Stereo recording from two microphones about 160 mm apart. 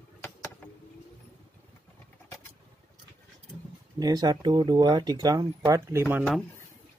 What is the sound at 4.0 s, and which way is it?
Speech, 25° right (ahead or behind).